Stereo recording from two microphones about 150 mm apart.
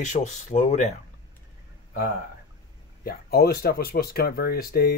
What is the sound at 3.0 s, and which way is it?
Speech, 85° left.